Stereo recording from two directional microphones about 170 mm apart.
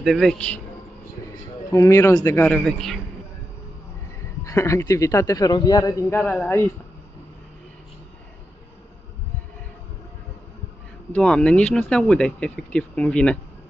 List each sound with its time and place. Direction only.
0.0 s speech: centre (ahead or behind)
1.7 s speech: 20° left (ahead or behind); by 3.0 s centre (ahead or behind)
4.5 s speech: 15° left (ahead or behind)
11.1 s speech: 5° left (ahead or behind)